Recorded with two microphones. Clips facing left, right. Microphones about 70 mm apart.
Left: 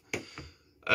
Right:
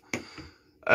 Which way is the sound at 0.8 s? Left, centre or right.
Right.